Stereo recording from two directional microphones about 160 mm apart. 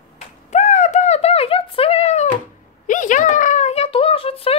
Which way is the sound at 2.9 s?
55° left (ahead or behind).